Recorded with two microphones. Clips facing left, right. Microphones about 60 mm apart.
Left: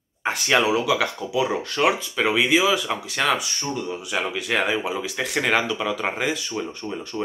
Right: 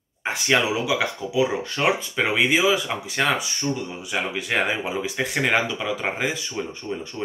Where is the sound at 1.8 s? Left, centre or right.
Right; by 6.8 s centre.